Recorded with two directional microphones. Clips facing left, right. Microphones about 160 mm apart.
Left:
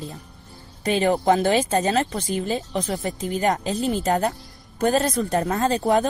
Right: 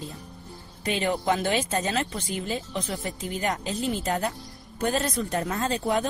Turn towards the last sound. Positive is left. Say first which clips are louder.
# left 6 dB
turn(degrees=45)  # may be behind; listen again after turning